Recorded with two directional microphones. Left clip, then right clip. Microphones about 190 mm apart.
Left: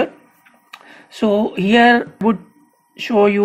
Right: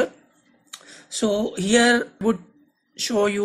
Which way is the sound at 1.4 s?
Centre (ahead or behind).